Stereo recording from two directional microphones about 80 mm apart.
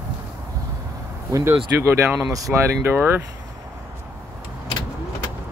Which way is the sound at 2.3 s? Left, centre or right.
Right.